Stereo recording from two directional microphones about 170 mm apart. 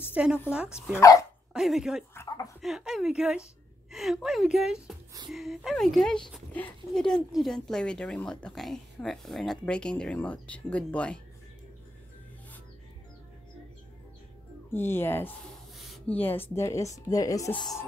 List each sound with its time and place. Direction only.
0.1 s speech: 5° right (ahead or behind)
0.9 s speech: 20° left (ahead or behind)
1.5 s speech: 5° right (ahead or behind)
2.1 s speech: 20° left (ahead or behind)
2.6 s speech: centre (ahead or behind)
14.7 s speech: 15° left (ahead or behind)
15.8 s a sound: centre (ahead or behind)
16.2 s speech: 10° left (ahead or behind)